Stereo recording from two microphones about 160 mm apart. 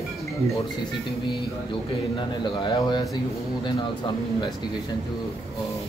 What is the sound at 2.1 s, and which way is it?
Speech, 30° left (ahead or behind).